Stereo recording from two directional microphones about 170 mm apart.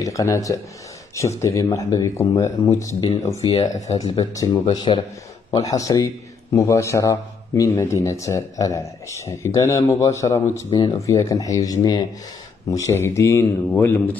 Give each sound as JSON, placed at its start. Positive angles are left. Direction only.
{"t": 0.0, "sound": "a man's voice", "side_deg": 20}